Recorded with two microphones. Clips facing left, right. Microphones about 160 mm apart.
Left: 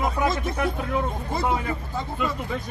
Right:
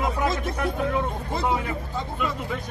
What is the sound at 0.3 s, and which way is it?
Speech, centre (ahead or behind).